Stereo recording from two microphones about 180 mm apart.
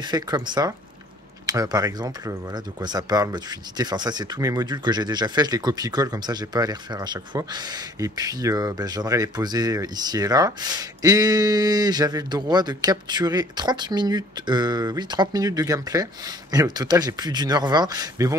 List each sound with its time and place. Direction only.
0.0 s speech: 25° right (ahead or behind)